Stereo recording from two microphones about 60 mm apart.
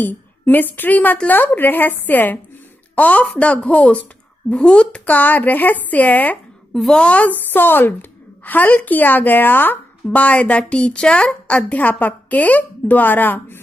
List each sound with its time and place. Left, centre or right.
0.0 s a woman's voice: left